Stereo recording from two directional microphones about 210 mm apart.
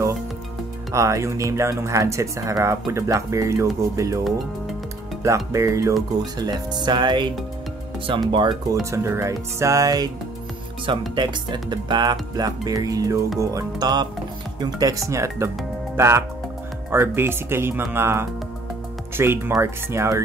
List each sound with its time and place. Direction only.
0.9 s speech: 15° right (ahead or behind)
5.2 s speech: 15° right (ahead or behind)
8.3 s speech: 20° right (ahead or behind)